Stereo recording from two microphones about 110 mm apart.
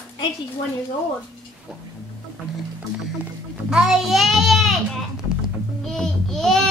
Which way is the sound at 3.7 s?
5° right (ahead or behind).